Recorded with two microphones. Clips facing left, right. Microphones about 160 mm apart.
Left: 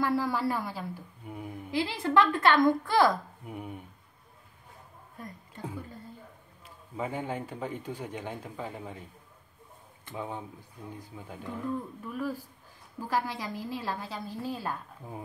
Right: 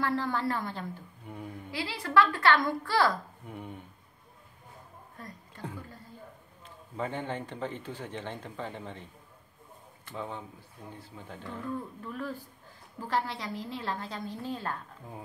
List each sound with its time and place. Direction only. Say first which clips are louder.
0.0 s a woman's voice: left 2 dB; 10° left (ahead or behind)
1.7 s a woman's voice: left 6 dB; 20° left (ahead or behind)
3.4 s a woman's voice: left 3 dB; 10° left (ahead or behind)
5.2 s speech: left 2 dB; 10° left (ahead or behind)
7.0 s a woman's voice: left 1 dB; 5° left (ahead or behind)
10.0 s a woman's voice: left 1 dB; 15° left (ahead or behind)